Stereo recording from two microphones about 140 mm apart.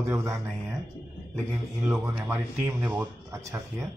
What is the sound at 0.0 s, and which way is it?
Speech, 20° right (ahead or behind).